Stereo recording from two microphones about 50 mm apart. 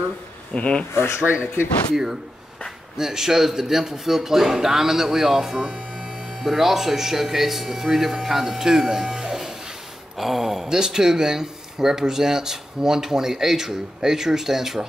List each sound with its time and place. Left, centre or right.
0.6 s speech: left
0.9 s speech: left
1.2 s speech: right
3.0 s a man's voice: centre